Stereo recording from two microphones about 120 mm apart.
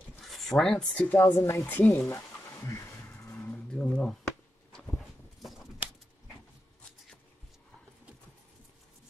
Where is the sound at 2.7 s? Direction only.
20° left (ahead or behind); by 5.5 s centre (ahead or behind).